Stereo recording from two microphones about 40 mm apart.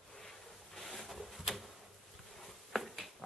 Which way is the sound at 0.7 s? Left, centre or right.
Centre.